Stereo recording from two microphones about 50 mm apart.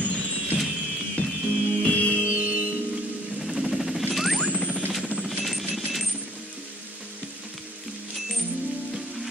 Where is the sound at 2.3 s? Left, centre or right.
Right.